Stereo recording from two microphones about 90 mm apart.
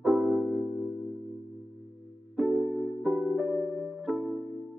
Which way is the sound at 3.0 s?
5° left (ahead or behind).